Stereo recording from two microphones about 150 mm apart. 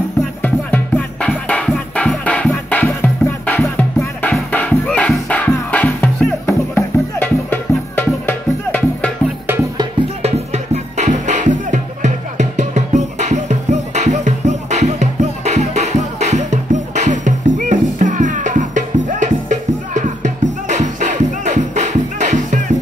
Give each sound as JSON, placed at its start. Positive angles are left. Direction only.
{"t": 0.4, "sound": "music", "side_deg": 10}
{"t": 10.2, "sound": "music", "side_deg": -45}